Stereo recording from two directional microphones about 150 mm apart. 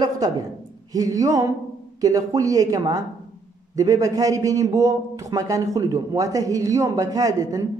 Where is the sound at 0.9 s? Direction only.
20° right (ahead or behind).